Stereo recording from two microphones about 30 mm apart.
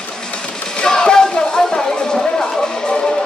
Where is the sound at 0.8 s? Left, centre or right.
Left.